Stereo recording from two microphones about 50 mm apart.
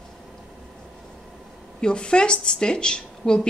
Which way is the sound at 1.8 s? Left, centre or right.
Centre.